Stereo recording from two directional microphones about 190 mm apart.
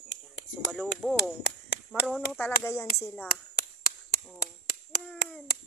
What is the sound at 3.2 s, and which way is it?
Chop, 50° left (ahead or behind).